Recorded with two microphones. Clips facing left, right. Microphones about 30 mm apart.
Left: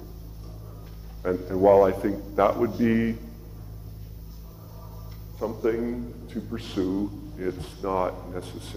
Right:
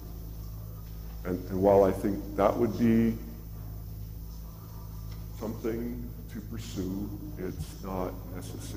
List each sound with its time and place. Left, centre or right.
1.2 s a man's voice: left
5.4 s a man's voice: left